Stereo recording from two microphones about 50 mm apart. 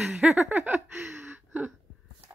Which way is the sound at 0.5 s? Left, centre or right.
Right.